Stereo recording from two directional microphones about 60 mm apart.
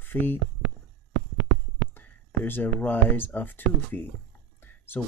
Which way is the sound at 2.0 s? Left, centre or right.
Left.